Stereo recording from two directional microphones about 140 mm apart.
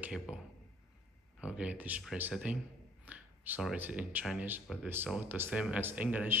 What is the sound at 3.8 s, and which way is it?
A man's voice, 10° right (ahead or behind).